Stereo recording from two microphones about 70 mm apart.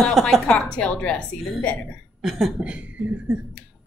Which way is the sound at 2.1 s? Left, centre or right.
Centre.